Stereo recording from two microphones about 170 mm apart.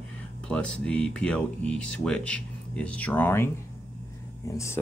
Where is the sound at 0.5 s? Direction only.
5° left (ahead or behind).